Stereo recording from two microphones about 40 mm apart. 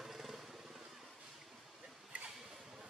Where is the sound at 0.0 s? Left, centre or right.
Centre.